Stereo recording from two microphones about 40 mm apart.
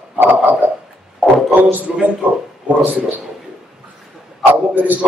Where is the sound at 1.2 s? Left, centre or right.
Centre.